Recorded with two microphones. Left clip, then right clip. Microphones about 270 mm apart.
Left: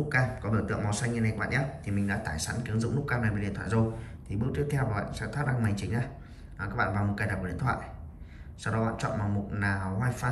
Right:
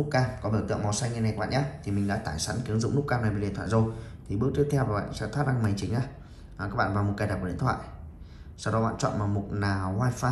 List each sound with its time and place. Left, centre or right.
0.1 s a man's voice: centre